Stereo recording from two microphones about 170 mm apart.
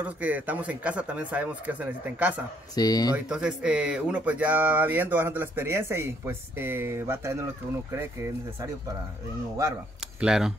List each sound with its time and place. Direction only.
0.0 s speech: 10° right (ahead or behind)
2.7 s speech: 20° left (ahead or behind)
3.3 s speech: 5° right (ahead or behind)
10.2 s speech: 5° right (ahead or behind)